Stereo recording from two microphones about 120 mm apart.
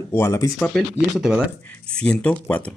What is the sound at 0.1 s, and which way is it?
Speech, 25° left (ahead or behind).